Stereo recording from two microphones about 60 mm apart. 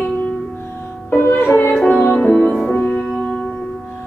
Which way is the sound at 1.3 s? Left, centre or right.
Left.